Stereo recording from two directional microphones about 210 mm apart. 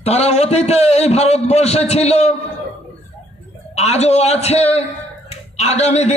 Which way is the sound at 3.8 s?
30° left (ahead or behind).